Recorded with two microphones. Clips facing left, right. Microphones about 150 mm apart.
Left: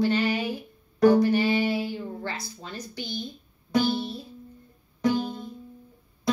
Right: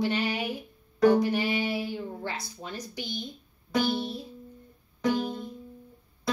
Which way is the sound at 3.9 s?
15° right (ahead or behind).